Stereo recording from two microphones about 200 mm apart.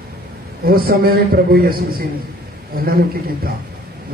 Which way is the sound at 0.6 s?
45° right (ahead or behind).